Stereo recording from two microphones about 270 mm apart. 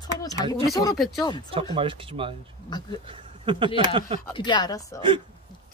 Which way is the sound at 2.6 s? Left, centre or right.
Centre.